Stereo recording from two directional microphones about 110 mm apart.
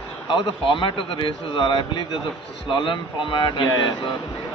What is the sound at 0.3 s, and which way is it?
A man's voice, 50° left (ahead or behind).